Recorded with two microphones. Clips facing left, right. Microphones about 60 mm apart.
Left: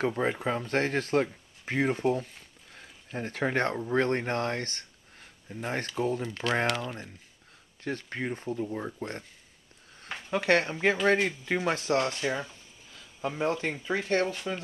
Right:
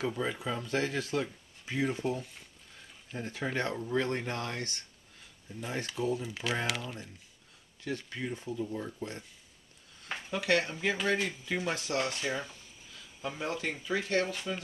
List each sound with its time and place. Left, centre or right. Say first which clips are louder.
0.0 s speech: left 5 dB; left
3.2 s speech: left 5 dB; left
3.7 s speech: left 5 dB; left
6.2 s speech: left 5 dB; centre
7.8 s speech: left 3 dB; left
10.3 s speech: left 4 dB; left
12.9 s a sound: left 5 dB; left
13.4 s speech: left 6 dB; left